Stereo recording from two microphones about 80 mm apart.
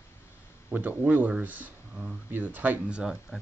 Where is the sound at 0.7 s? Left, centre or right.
Right.